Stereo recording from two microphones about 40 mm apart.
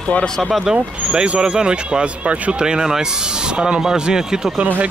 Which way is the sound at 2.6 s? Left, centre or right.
Centre.